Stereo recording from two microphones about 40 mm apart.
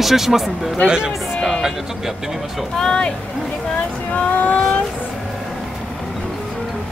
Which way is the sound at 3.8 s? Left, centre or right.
Left.